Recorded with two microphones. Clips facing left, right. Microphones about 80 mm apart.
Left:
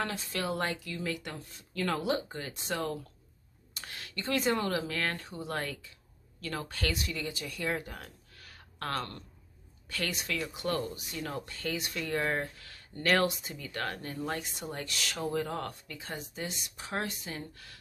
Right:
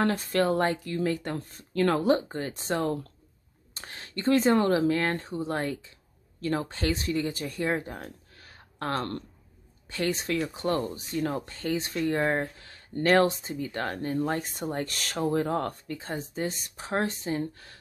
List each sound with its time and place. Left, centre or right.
0.0 s speech: right